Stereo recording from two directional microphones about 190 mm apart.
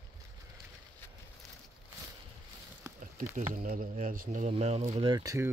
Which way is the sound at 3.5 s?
45° right (ahead or behind).